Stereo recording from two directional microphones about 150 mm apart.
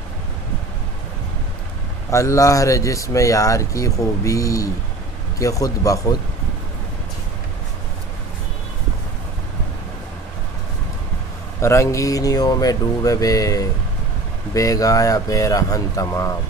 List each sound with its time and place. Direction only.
2.0 s speech: 20° left (ahead or behind)
11.6 s speech: 20° left (ahead or behind)